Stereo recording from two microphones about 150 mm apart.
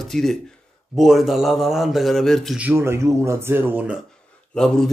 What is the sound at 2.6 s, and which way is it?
Speech, 15° right (ahead or behind).